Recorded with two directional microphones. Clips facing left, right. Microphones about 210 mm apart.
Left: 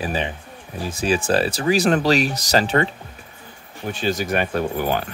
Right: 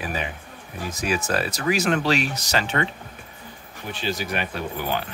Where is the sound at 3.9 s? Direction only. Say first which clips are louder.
Left 5 dB; 45° left (ahead or behind).